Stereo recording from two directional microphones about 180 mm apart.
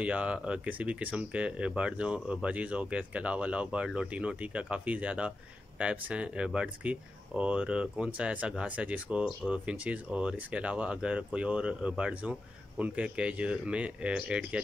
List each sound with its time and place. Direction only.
0.0 s speech: 5° right (ahead or behind)